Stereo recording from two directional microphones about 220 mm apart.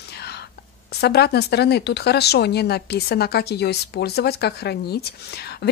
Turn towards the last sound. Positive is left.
turn(degrees=45)  # may be behind; listen again after turning